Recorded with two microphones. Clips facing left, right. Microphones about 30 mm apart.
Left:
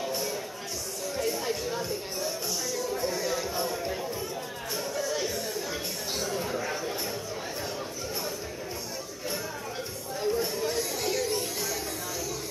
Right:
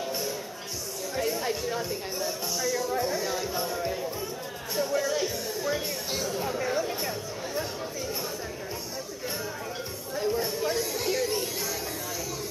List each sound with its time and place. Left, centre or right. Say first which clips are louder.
1.1 s speech: right 1 dB; centre
2.6 s speech: right 6 dB; centre
3.0 s speech: right 1 dB; centre
4.7 s speech: right 5 dB; centre
10.1 s chatter: right 1 dB; centre